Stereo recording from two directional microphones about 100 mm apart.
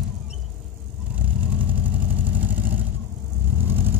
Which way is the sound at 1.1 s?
15° right (ahead or behind).